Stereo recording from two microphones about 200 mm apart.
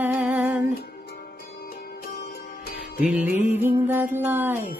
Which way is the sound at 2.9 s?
5° right (ahead or behind).